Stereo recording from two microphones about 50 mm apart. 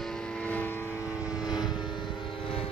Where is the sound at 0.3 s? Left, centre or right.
Left.